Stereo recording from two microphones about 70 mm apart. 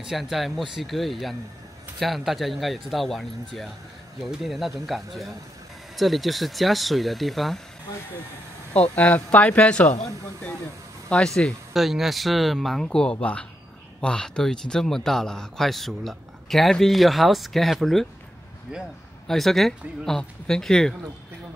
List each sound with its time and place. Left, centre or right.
0.0 s speech: centre
8.7 s speech: left
11.1 s speech: centre
11.7 s speech: centre
12.8 s speech: centre
18.7 s speech: centre
19.2 s speech: centre